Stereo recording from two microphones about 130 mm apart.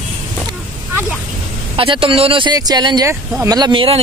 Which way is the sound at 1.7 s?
45° right (ahead or behind).